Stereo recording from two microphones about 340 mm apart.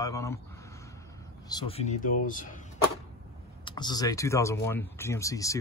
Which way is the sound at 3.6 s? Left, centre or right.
Centre.